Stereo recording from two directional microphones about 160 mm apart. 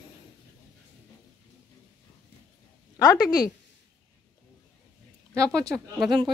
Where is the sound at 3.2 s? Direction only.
25° left (ahead or behind).